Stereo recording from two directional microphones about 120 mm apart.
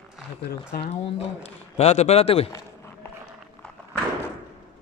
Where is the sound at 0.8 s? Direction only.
55° left (ahead or behind).